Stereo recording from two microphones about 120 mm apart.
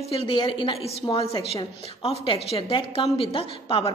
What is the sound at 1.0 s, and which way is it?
Speech, 30° left (ahead or behind).